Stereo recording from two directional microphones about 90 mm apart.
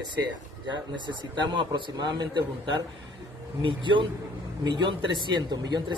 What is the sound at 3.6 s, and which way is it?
Speech, 65° right (ahead or behind).